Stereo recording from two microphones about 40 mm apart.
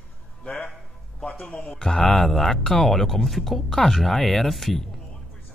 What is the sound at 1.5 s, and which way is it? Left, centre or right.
Speech, left.